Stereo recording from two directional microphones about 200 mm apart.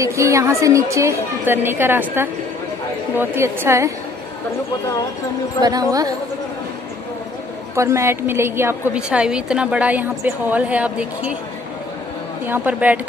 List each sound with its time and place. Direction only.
0.0 s a woman's voice: 15° right (ahead or behind)
5.6 s speech: 20° right (ahead or behind)
7.7 s a woman's voice: 15° right (ahead or behind)
12.4 s a woman's voice: 10° right (ahead or behind)